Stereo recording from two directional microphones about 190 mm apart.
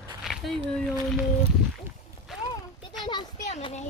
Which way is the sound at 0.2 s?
Centre (ahead or behind).